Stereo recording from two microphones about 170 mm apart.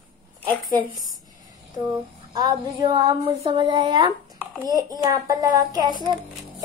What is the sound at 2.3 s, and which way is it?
A woman's voice, 25° right (ahead or behind).